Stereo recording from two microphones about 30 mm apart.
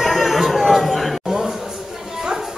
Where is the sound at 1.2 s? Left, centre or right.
Centre.